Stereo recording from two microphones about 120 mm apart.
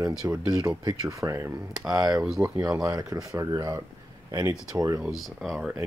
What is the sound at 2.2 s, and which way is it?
Speech, 10° right (ahead or behind).